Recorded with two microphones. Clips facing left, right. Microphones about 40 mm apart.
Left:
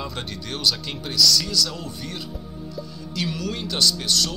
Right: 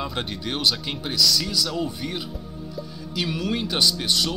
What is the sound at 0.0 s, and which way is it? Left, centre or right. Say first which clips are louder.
Speech: right 3 dB; centre.